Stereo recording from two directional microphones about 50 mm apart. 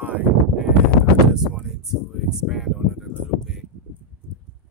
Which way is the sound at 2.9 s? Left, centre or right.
Centre.